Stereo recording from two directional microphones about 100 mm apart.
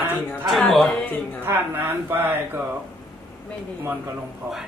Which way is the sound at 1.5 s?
25° right (ahead or behind).